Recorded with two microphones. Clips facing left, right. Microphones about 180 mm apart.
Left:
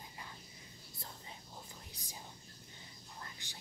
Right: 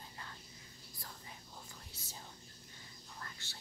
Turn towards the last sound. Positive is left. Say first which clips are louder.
# even
turn(degrees=15)  # may be behind; listen again after turning